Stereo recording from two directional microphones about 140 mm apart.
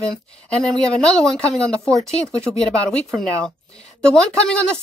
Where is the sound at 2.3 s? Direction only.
20° right (ahead or behind).